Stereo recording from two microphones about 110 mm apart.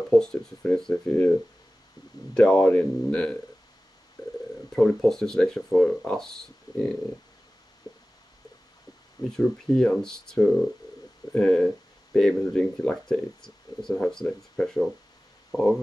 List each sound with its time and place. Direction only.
0.2 s speech: 5° left (ahead or behind)
2.3 s speech: 5° left (ahead or behind)
4.7 s speech: 5° left (ahead or behind)
7.8 s a sound: 35° left (ahead or behind)
9.4 s speech: 5° left (ahead or behind)